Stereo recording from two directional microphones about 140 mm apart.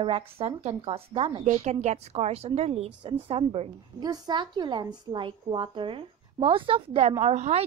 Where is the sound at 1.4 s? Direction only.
60° right (ahead or behind); by 3.7 s 45° right (ahead or behind).